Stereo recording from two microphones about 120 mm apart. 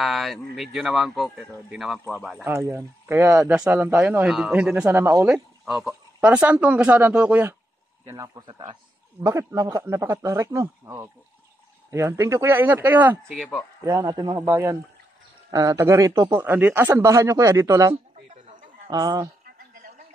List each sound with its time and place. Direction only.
0.0 s speech: centre (ahead or behind)
2.4 s a man's voice: 20° right (ahead or behind)
4.2 s speech: 5° right (ahead or behind)
4.9 s a man's voice: 25° right (ahead or behind)
5.2 s speech: 10° right (ahead or behind)
8.0 s a man's voice: 25° right (ahead or behind)
8.5 s speech: 40° right (ahead or behind)
9.2 s a man's voice: 25° right (ahead or behind)
13.8 s a man's voice: 30° right (ahead or behind)